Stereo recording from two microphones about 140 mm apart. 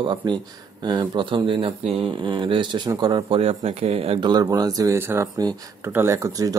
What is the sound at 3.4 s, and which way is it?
Speech, 45° right (ahead or behind).